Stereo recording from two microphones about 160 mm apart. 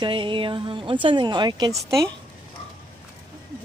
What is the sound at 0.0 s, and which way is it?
Speech, 30° right (ahead or behind).